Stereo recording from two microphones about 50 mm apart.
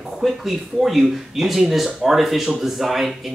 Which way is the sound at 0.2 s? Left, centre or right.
Centre.